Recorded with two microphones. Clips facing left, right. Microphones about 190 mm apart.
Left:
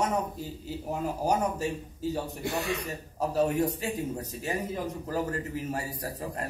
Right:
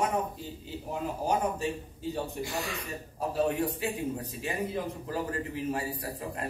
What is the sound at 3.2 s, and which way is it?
A man's voice, 40° left (ahead or behind).